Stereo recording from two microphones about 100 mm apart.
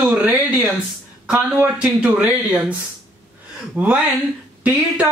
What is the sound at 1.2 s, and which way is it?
Speech, 10° right (ahead or behind).